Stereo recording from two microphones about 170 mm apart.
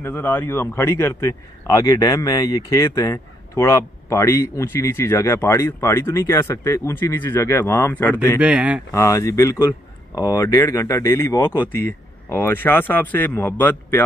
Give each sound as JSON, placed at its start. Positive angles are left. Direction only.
{"t": 0.0, "sound": "a man's voice", "side_deg": 10}
{"t": 8.4, "sound": "speech", "side_deg": -10}
{"t": 8.9, "sound": "a man's voice", "side_deg": 20}